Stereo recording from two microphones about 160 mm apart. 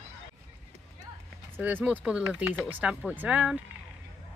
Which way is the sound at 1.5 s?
10° right (ahead or behind).